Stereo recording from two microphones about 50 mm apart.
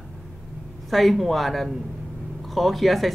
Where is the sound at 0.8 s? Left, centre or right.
Centre.